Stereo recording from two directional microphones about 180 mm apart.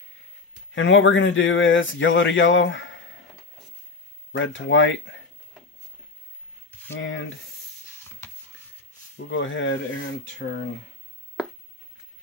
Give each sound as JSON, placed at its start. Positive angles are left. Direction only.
{"t": 0.7, "sound": "speech", "side_deg": 90}
{"t": 4.3, "sound": "speech", "side_deg": 90}
{"t": 6.9, "sound": "speech", "side_deg": 90}
{"t": 9.1, "sound": "speech", "side_deg": 90}